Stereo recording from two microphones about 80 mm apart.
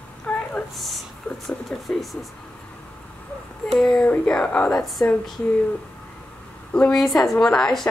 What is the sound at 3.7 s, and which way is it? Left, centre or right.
A woman's voice, centre.